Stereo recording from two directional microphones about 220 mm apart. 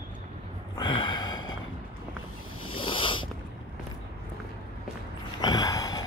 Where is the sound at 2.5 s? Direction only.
75° left (ahead or behind).